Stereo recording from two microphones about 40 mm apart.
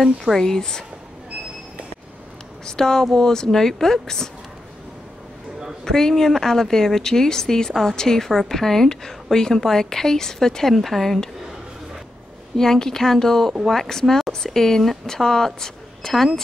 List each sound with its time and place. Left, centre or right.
0.2 s speech: centre
2.6 s speech: centre
5.9 s speech: centre
10.7 s speech: centre
12.5 s speech: centre